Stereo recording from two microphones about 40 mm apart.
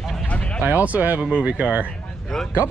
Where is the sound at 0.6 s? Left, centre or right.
Right.